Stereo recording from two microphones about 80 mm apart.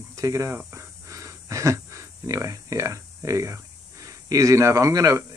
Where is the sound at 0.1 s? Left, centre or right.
Right.